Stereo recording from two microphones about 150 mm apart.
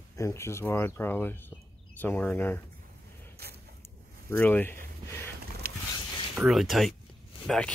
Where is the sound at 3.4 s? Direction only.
90° right.